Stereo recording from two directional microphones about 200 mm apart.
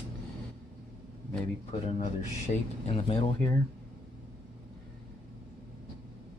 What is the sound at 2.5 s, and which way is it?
Speech, 35° left (ahead or behind).